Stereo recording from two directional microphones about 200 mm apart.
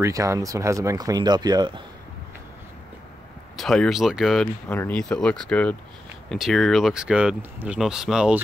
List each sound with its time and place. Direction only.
0.0 s speech: 15° right (ahead or behind)
3.5 s speech: centre (ahead or behind)